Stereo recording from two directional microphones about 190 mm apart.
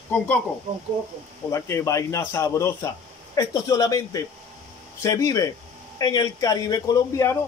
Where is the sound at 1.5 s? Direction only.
15° left (ahead or behind).